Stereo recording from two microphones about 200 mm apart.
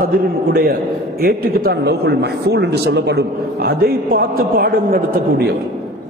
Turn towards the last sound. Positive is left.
turn(degrees=-50)  # may be behind; listen again after turning